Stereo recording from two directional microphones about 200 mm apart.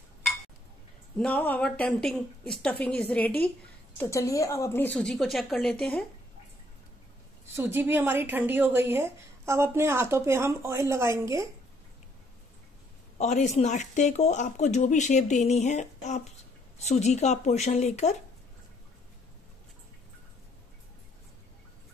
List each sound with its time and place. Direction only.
1.1 s a woman's voice: 5° left (ahead or behind)
7.5 s a woman's voice: 10° right (ahead or behind)
13.2 s speech: 35° left (ahead or behind)